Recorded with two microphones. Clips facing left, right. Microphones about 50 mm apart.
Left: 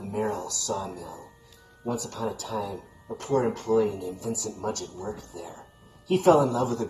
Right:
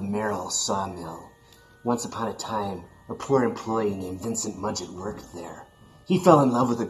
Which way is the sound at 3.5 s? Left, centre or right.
Right.